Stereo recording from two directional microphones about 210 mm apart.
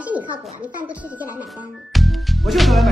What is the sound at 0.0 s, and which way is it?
Speech, 5° right (ahead or behind).